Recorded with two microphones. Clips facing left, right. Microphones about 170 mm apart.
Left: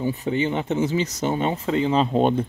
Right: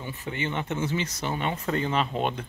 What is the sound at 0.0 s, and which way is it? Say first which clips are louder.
Speech: left 10 dB; 35° left (ahead or behind).